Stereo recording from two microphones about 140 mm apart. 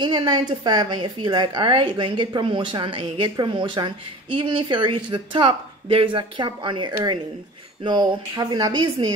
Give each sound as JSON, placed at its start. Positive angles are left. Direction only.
{"t": 0.0, "sound": "a woman's voice", "side_deg": -35}